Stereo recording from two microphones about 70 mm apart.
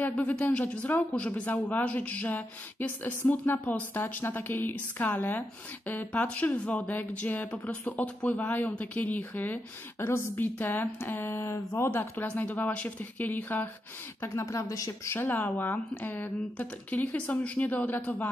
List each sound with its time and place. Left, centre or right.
0.0 s speech: left
12.2 s speech: left
14.2 s speech: left
15.1 s speech: left